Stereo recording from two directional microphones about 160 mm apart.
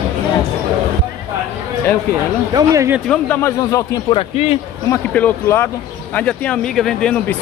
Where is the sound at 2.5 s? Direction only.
20° right (ahead or behind).